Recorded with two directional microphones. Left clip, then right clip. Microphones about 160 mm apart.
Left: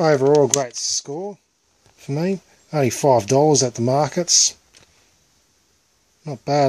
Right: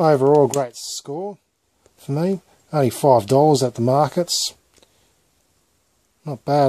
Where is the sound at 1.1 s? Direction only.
5° left (ahead or behind).